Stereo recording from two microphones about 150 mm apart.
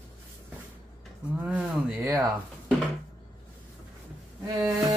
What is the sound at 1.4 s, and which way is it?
Speech, 10° right (ahead or behind).